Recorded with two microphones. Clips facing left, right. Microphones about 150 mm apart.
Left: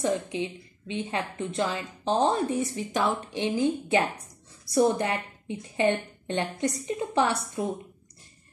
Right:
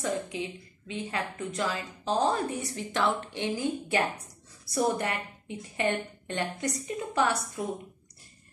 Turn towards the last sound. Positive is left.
turn(degrees=25)  # may be behind; listen again after turning